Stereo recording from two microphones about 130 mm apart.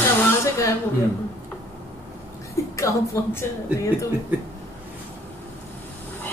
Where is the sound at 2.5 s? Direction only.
25° left (ahead or behind).